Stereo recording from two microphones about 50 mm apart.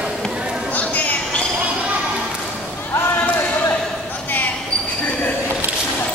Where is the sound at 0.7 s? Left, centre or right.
Left.